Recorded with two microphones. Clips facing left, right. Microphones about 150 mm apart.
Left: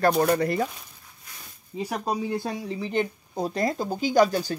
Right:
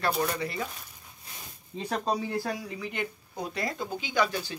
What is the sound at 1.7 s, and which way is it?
Speech, 10° left (ahead or behind).